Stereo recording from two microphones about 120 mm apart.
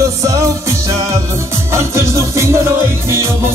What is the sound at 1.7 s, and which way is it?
Music, 25° right (ahead or behind).